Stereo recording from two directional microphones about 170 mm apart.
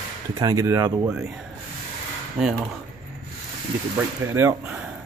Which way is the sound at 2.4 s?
Centre (ahead or behind).